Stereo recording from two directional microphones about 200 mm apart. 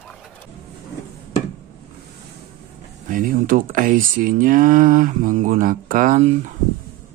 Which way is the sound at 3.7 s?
45° right (ahead or behind).